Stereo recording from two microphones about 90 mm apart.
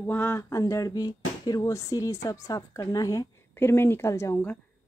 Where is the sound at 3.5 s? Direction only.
25° left (ahead or behind).